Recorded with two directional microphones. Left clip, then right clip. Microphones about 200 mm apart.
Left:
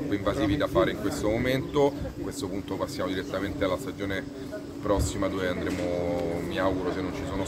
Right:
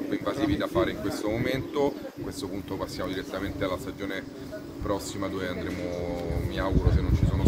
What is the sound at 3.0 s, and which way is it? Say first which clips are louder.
Speech: left 2 dB; centre (ahead or behind).